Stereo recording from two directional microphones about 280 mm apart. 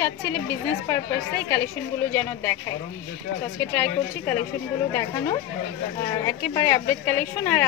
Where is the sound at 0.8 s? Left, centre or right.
Centre.